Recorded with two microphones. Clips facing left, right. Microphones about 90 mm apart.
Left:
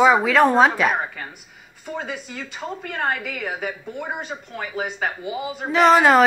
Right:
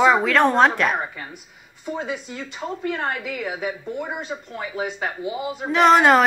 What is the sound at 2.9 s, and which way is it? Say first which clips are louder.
Speech: left 2 dB; 50° left (ahead or behind).